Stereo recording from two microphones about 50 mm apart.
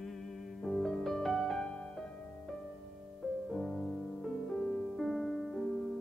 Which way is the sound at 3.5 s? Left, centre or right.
Centre.